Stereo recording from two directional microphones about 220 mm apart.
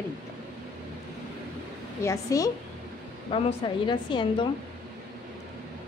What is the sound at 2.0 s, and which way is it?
Speech, 15° left (ahead or behind).